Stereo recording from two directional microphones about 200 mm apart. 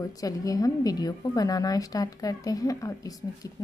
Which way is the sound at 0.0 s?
15° left (ahead or behind).